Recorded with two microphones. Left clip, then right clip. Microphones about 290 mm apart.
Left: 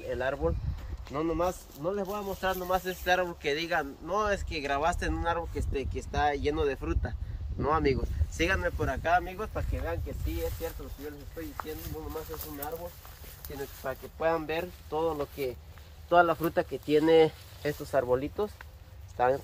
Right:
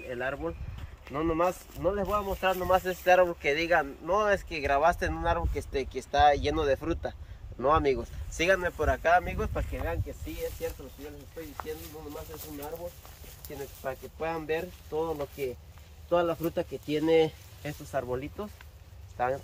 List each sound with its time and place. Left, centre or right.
0.1 s speech: centre
1.1 s speech: centre
1.8 s speech: centre
13.8 s speech: centre; by 19.4 s left